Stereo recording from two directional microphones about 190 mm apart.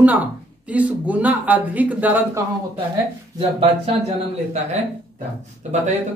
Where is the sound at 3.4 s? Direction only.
30° right (ahead or behind).